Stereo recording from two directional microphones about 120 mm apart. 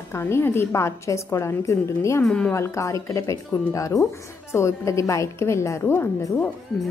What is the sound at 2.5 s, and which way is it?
A woman's voice, 25° left (ahead or behind).